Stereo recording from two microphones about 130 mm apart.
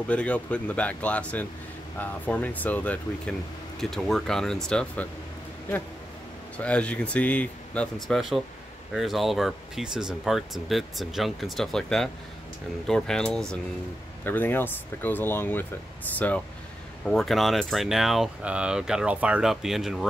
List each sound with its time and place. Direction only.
0.1 s speech: 10° left (ahead or behind)
6.5 s speech: 10° left (ahead or behind)
14.2 s speech: 15° left (ahead or behind)
17.0 s speech: centre (ahead or behind)